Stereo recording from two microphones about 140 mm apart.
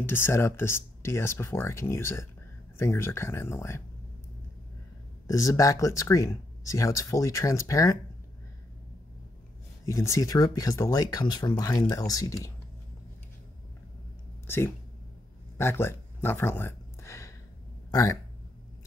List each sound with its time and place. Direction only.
0.0 s speech: 15° left (ahead or behind)
5.2 s speech: 25° left (ahead or behind)
9.8 s speech: 25° left (ahead or behind)
15.5 s a sound: 15° left (ahead or behind)